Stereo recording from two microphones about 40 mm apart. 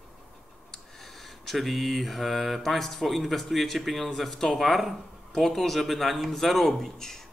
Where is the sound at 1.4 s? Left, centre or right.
Centre.